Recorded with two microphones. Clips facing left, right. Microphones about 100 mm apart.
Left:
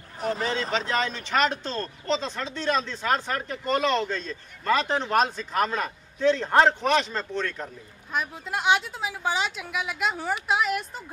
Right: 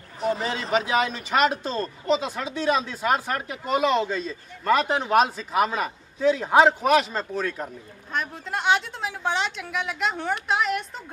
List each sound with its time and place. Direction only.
0.2 s speech: 5° right (ahead or behind)
8.1 s a woman's voice: 5° left (ahead or behind)